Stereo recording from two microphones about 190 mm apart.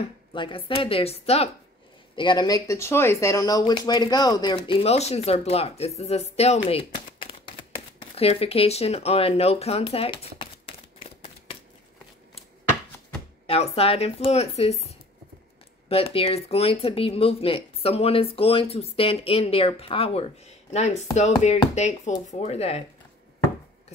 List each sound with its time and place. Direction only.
0.3 s speech: 25° left (ahead or behind)
13.5 s speech: 30° left (ahead or behind)